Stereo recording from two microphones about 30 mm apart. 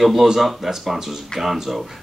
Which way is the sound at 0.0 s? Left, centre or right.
Centre.